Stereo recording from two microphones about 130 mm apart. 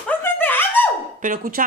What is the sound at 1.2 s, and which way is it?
Speech, 90° right.